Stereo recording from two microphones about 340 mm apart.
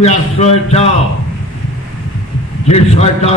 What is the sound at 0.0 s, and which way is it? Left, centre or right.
Speech, centre.